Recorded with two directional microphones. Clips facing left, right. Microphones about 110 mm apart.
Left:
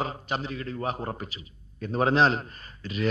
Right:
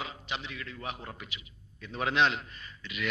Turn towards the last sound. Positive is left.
turn(degrees=35)  # may be behind; listen again after turning